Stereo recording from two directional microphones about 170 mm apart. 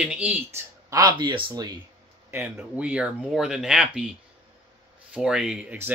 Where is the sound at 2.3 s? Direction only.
10° right (ahead or behind).